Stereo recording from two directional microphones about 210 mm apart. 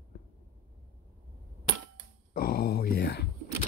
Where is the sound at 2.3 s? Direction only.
45° left (ahead or behind).